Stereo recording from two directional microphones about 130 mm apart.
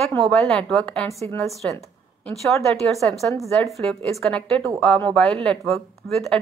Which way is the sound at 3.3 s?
25° left (ahead or behind).